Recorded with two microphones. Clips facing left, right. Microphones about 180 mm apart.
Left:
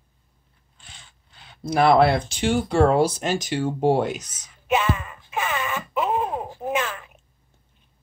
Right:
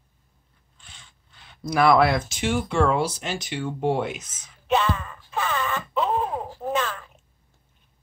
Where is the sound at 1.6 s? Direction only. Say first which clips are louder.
Left 2 dB; 30° left (ahead or behind).